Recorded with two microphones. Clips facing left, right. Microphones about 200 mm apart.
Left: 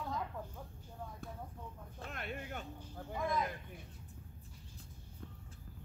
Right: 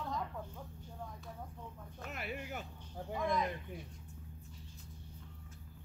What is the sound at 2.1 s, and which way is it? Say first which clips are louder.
Speech: right 1 dB; 5° right (ahead or behind).